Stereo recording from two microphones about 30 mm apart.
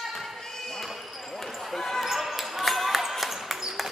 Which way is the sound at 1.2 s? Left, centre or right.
Centre.